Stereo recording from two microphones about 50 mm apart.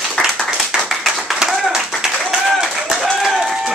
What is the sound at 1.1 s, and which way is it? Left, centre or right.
Clapping, centre.